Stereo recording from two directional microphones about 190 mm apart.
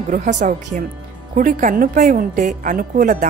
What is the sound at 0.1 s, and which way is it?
Speech, 45° right (ahead or behind).